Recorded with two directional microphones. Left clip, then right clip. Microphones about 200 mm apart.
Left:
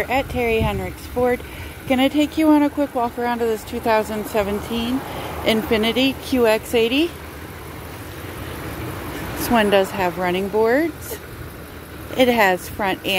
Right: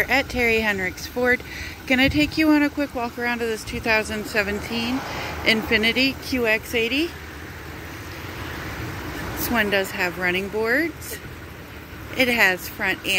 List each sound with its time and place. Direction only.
0.0 s speech: centre (ahead or behind); by 7.1 s 30° left (ahead or behind)
9.4 s speech: 30° left (ahead or behind)
12.2 s speech: 25° left (ahead or behind)